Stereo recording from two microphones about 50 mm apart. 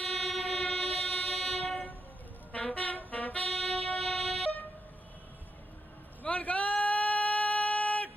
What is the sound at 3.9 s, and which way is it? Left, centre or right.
Vehicle, centre.